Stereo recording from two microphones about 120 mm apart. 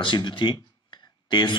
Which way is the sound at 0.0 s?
40° left (ahead or behind).